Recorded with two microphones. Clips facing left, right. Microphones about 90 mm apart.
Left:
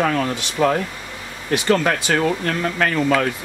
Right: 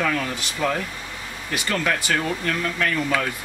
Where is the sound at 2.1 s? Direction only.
45° left (ahead or behind).